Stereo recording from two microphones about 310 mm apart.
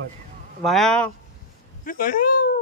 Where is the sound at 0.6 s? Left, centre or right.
Centre.